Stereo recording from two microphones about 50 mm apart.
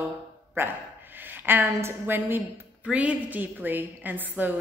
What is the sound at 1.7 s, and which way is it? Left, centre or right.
Speech, right.